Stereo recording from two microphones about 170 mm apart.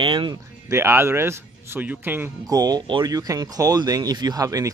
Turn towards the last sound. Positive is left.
turn(degrees=-20)  # may be behind; listen again after turning